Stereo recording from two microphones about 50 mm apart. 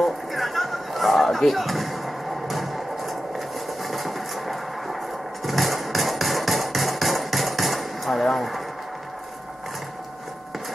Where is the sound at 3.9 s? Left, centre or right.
Centre.